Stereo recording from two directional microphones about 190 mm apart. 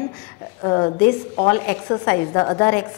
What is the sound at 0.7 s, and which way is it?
A woman's voice, 20° left (ahead or behind).